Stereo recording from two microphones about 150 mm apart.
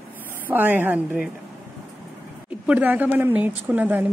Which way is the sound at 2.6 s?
10° right (ahead or behind).